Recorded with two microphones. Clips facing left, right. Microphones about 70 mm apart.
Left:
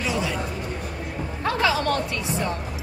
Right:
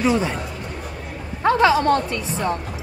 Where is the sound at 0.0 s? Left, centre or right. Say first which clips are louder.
Right 7 dB; right.